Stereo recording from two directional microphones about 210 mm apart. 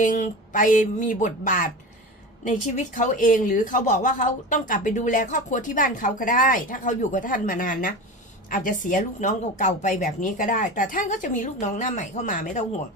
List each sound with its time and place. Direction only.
0.0 s a woman's voice: 35° left (ahead or behind)